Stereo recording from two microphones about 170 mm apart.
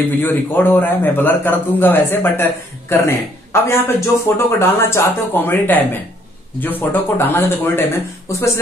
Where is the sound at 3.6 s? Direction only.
15° left (ahead or behind).